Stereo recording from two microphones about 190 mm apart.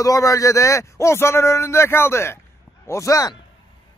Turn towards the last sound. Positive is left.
turn(degrees=20)  # may be behind; listen again after turning